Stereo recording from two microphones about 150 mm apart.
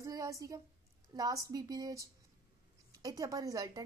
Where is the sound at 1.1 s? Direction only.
25° right (ahead or behind).